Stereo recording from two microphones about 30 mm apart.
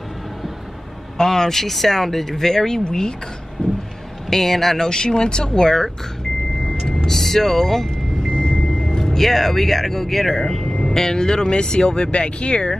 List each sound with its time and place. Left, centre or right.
1.1 s speech: centre
3.6 s vehicle: left
4.3 s speech: centre
4.7 s speech: left
7.1 s speech: centre
8.3 s vehicle: left
9.0 s speech: centre; by 12.7 s left